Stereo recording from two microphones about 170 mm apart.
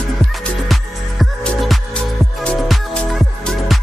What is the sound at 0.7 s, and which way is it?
Music, centre (ahead or behind).